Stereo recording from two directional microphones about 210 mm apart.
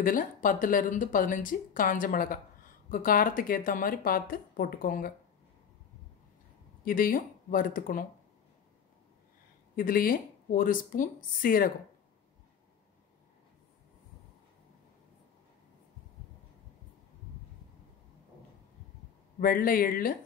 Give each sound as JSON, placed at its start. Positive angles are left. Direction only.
{"t": 0.0, "sound": "speech", "side_deg": 40}
{"t": 6.8, "sound": "speech", "side_deg": 45}
{"t": 9.8, "sound": "speech", "side_deg": 45}
{"t": 19.4, "sound": "speech", "side_deg": 45}